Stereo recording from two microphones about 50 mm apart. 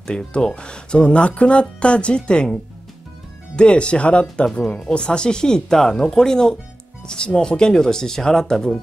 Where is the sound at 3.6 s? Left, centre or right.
Left.